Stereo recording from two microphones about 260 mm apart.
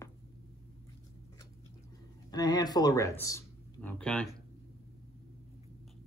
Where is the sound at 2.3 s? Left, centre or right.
Centre.